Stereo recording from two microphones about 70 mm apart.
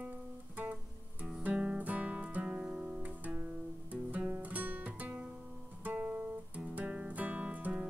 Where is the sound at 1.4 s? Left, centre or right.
Right.